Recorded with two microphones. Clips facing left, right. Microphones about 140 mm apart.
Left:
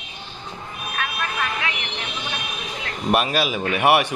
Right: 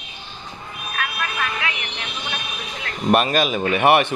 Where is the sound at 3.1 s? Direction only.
5° left (ahead or behind).